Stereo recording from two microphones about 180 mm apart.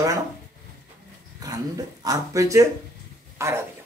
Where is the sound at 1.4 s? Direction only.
20° right (ahead or behind).